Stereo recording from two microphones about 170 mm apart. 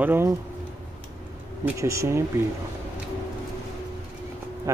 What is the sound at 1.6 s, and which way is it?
Speech, 15° right (ahead or behind).